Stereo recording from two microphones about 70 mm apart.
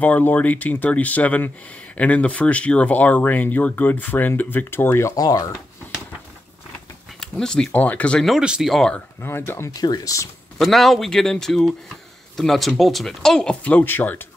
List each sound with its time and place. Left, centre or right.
0.0 s speech: left
5.1 s speech: left
7.2 s speech: centre
7.7 s speech: left
8.4 s speech: centre
9.2 s speech: left
9.8 s speech: left
10.6 s speech: centre
13.7 s speech: left